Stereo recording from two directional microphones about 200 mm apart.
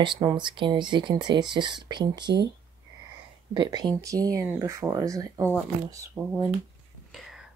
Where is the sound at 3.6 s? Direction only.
20° right (ahead or behind).